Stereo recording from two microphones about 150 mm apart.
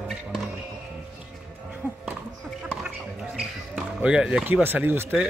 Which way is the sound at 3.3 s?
5° right (ahead or behind).